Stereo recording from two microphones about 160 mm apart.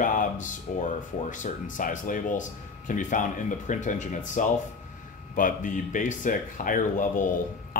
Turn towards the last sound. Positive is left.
turn(degrees=55)  # may be behind; listen again after turning